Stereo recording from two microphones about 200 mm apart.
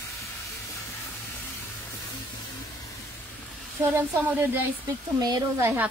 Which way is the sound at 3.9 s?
10° right (ahead or behind).